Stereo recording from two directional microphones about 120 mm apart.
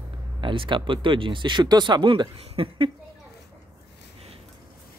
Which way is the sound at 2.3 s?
55° right (ahead or behind).